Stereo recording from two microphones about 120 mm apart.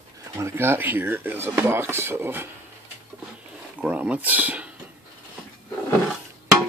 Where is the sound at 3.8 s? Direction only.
10° right (ahead or behind).